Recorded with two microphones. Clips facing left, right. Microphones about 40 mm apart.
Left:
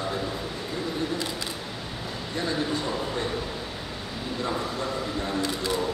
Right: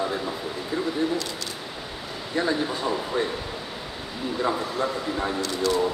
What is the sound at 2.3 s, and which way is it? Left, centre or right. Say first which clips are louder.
Speech: right 3 dB; centre.